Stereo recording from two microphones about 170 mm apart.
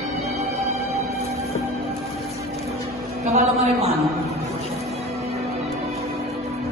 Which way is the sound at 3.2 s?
40° right (ahead or behind).